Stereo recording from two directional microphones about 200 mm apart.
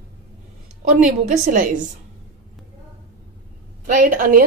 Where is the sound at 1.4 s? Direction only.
40° right (ahead or behind).